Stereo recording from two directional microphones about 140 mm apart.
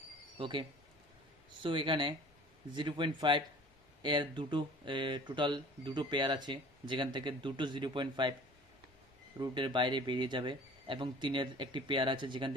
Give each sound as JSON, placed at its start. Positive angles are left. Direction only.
{"t": 0.4, "sound": "speech", "side_deg": -35}
{"t": 9.4, "sound": "speech", "side_deg": -35}